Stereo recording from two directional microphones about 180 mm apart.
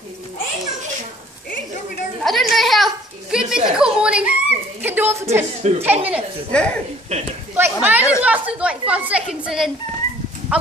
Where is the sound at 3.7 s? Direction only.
5° right (ahead or behind).